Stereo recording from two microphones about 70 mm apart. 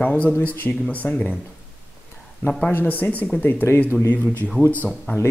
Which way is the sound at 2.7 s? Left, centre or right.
Left.